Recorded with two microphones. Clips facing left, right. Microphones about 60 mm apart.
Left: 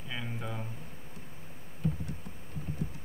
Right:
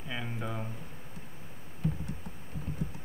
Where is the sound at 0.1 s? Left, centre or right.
Centre.